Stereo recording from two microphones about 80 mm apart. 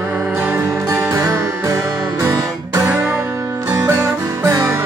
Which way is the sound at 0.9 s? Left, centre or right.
Right.